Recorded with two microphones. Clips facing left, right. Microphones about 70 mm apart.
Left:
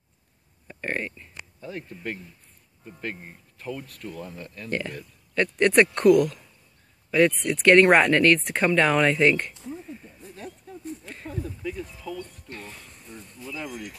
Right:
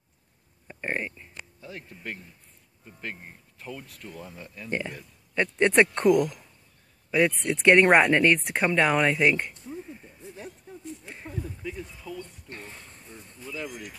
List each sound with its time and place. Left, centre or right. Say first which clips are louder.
0.7 s speech: left 1 dB; centre
1.6 s speech: left 7 dB; centre
4.6 s a man's voice: left 1 dB; centre
10.7 s a sound: left 3 dB; centre
11.8 s speech: left 3 dB; centre
12.4 s a sound: left 2 dB; right